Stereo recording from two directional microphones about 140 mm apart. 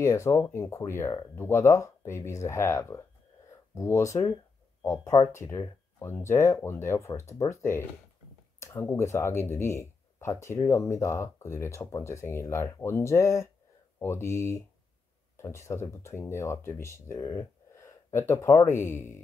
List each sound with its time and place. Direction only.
0.0 s speech: 20° left (ahead or behind)
8.5 s speech: 20° left (ahead or behind)